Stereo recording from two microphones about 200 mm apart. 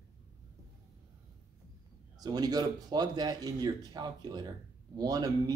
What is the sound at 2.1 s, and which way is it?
Speech, 20° right (ahead or behind).